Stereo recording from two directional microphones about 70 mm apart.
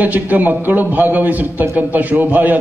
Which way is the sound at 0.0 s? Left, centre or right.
Right.